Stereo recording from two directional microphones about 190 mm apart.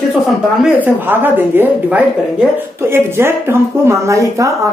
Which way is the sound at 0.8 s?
10° right (ahead or behind).